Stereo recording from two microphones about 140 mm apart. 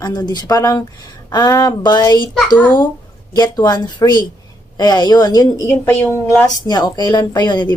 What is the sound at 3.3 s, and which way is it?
Speech, 30° left (ahead or behind).